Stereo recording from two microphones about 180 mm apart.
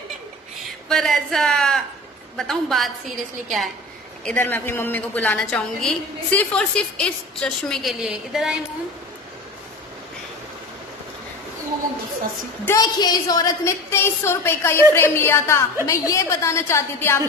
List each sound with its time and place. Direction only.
0.8 s a woman's voice: centre (ahead or behind)
12.6 s a woman's voice: 20° left (ahead or behind)